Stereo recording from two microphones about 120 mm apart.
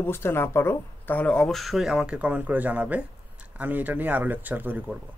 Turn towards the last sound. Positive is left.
turn(degrees=-15)  # may be behind; listen again after turning